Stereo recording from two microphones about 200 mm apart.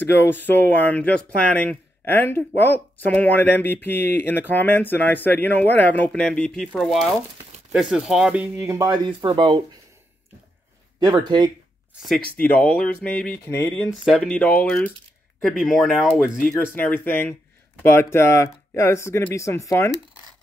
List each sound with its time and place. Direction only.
0.0 s speech: 10° left (ahead or behind); by 9.6 s 25° right (ahead or behind)
11.0 s speech: 20° right (ahead or behind)
12.4 s speech: 10° left (ahead or behind)
13.8 s speech: centre (ahead or behind)
16.4 s speech: 10° left (ahead or behind)